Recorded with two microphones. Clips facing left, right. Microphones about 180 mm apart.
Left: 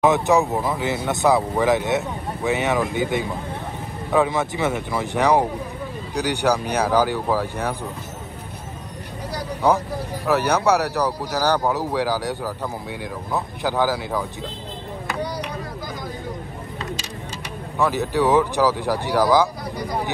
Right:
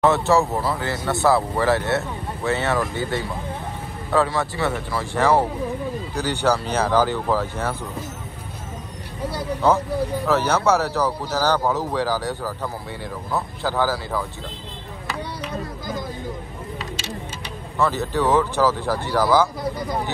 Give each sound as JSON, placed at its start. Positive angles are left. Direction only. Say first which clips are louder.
{"t": 0.0, "sound": "speech", "louder": "even", "side_deg": 15}
{"t": 10.2, "sound": "speech", "louder": "left 2 dB", "side_deg": 15}
{"t": 17.7, "sound": "speech", "louder": "left 1 dB", "side_deg": 15}